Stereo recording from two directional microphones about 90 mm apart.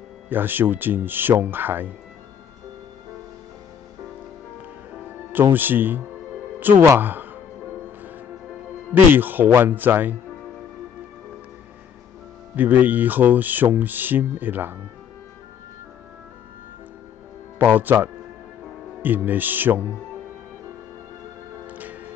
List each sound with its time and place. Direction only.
0.3 s speech: 20° right (ahead or behind)
5.4 s speech: 20° right (ahead or behind)
9.1 s speech: 20° right (ahead or behind)
12.5 s speech: 20° right (ahead or behind)
17.6 s speech: 20° right (ahead or behind)
21.6 s music: 20° right (ahead or behind)